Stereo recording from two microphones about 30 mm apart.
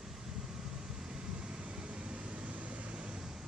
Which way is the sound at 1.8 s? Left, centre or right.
Right.